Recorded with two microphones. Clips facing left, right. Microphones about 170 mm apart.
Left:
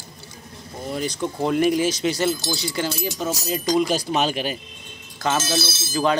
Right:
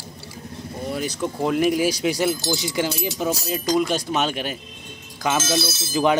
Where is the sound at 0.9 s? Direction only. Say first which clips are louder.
Left 1 dB; 5° right (ahead or behind).